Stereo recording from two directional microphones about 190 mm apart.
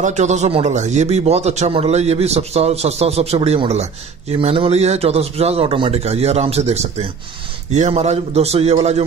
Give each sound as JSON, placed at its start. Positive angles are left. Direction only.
{"t": 0.0, "sound": "speech", "side_deg": -40}